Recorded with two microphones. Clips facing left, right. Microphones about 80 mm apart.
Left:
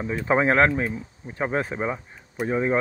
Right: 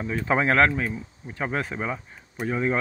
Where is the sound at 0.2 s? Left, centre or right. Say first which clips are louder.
Left 1 dB; left.